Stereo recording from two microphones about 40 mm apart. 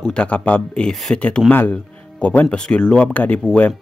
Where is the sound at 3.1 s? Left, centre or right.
Left.